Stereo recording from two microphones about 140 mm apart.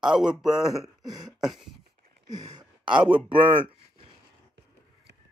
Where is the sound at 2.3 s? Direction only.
30° right (ahead or behind).